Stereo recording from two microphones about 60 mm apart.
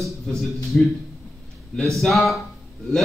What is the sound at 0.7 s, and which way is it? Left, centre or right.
Speech, centre.